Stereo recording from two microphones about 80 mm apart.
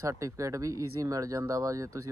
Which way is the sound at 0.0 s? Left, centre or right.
Right.